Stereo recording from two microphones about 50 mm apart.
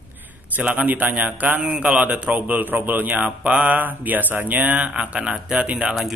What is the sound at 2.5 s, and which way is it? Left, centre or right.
Speech, right.